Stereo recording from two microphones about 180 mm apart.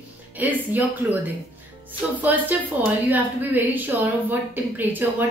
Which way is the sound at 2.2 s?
10° right (ahead or behind).